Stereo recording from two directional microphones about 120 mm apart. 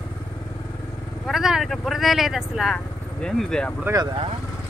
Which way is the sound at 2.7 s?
5° left (ahead or behind).